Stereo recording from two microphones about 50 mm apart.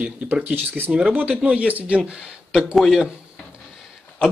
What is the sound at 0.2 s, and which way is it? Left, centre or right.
Speech, right.